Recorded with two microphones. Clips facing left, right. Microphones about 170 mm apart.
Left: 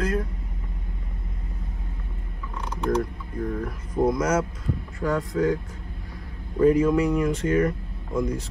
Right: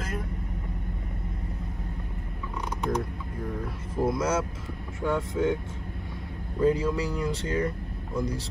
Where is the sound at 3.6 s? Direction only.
30° right (ahead or behind).